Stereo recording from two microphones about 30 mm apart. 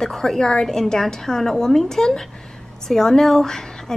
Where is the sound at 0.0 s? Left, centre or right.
Centre.